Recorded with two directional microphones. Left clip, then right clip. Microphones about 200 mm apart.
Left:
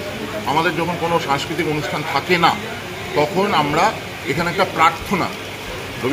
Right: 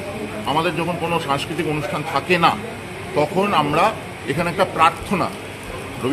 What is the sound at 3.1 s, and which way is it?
Speech, 25° right (ahead or behind).